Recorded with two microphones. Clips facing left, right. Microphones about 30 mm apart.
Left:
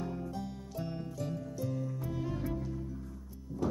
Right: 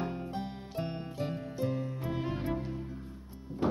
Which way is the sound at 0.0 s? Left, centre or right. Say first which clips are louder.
Right 2 dB; right.